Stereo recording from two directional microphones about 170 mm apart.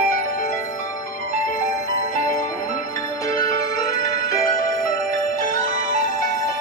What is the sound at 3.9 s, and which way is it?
Music, 55° left (ahead or behind).